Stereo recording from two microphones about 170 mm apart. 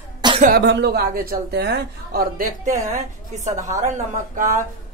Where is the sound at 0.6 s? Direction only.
85° right.